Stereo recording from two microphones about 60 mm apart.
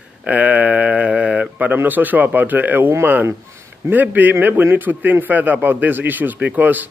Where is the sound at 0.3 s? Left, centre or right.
Right.